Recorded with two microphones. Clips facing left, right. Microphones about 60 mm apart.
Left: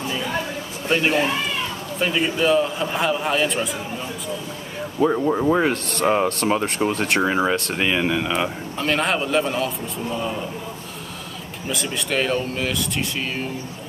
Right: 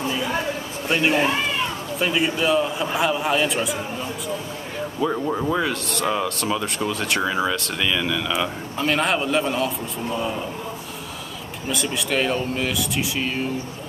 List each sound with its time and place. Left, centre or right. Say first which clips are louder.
0.8 s speech: even; centre
5.1 s speech: left 4 dB; centre
5.5 s speech: left 4 dB; left
8.7 s speech: right 1 dB; centre
11.7 s speech: even; centre